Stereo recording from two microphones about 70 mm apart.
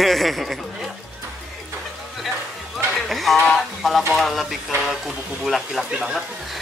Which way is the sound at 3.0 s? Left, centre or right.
Centre.